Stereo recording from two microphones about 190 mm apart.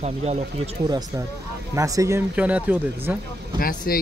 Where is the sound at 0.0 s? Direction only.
35° right (ahead or behind).